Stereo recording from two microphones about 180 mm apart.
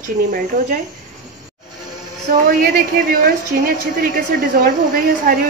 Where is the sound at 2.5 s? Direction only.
50° right (ahead or behind).